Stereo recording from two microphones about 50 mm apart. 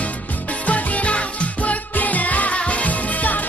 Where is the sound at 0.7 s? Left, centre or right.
Left.